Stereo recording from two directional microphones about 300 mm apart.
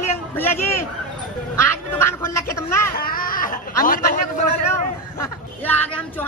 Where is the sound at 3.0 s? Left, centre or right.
Left.